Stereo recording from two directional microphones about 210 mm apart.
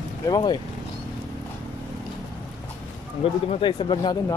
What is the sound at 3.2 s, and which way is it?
Speech, 30° left (ahead or behind).